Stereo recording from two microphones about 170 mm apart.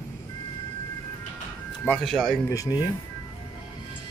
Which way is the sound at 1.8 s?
Centre (ahead or behind).